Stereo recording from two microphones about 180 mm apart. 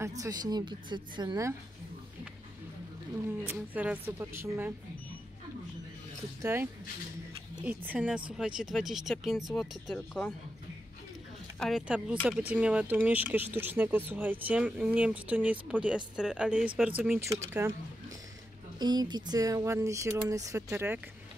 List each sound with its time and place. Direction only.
0.2 s speech: 20° right (ahead or behind)
3.5 s speech: 5° right (ahead or behind)
6.4 s speech: 15° right (ahead or behind); by 10.3 s centre (ahead or behind)
11.6 s speech: 5° right (ahead or behind)
17.3 s speech: 15° right (ahead or behind)
18.8 s speech: 25° right (ahead or behind)